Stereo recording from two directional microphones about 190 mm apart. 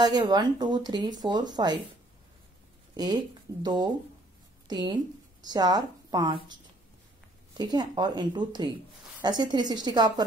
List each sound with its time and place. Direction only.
0.0 s speech: 20° right (ahead or behind)
2.9 s speech: 20° right (ahead or behind)